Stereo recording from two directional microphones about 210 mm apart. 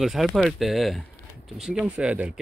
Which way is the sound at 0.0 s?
Centre (ahead or behind).